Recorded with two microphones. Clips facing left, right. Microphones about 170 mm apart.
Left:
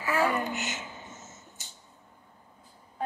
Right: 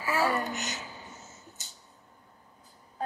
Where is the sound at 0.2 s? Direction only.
40° right (ahead or behind).